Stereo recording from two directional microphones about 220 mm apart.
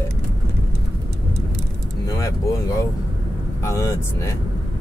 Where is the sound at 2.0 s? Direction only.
15° left (ahead or behind).